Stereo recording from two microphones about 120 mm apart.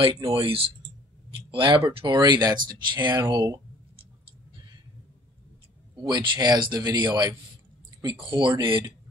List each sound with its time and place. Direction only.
0.3 s speech: 50° right (ahead or behind); by 3.6 s 30° right (ahead or behind)
6.0 s speech: 35° right (ahead or behind)